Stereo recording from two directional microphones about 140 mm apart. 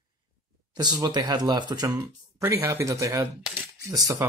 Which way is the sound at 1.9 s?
20° right (ahead or behind).